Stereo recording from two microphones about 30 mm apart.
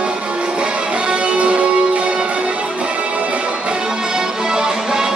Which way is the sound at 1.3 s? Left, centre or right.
Right.